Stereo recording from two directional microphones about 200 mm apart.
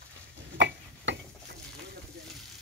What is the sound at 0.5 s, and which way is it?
Tick-tock, 60° right (ahead or behind).